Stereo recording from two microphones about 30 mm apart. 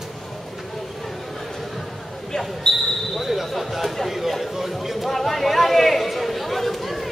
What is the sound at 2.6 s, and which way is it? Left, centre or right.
Speech, left.